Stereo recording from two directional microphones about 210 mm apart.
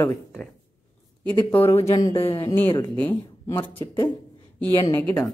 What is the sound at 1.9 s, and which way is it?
Speech, 20° left (ahead or behind).